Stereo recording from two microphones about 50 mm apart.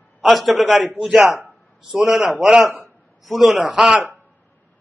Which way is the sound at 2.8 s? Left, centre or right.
Centre.